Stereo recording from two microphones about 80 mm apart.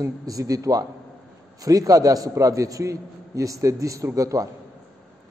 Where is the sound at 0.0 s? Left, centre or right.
Right.